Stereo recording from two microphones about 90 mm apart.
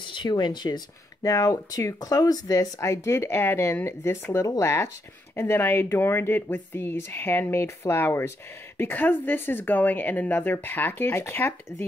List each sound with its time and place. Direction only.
0.0 s speech: 60° left (ahead or behind); by 11.5 s 25° left (ahead or behind)